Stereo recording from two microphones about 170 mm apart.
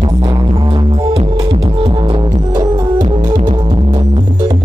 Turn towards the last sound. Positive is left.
turn(degrees=-25)  # may be behind; listen again after turning